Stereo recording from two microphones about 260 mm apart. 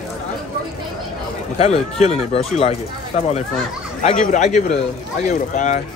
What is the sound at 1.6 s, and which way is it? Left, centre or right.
Speech, left.